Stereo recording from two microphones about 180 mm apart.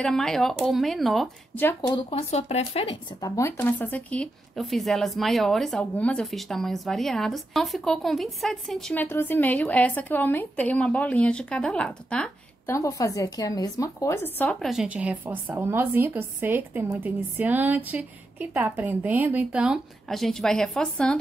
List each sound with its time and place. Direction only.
0.0 s a woman's voice: 5° left (ahead or behind)
1.8 s speech: 25° left (ahead or behind)
3.2 s a woman's voice: 20° left (ahead or behind)
12.7 s a woman's voice: 15° left (ahead or behind)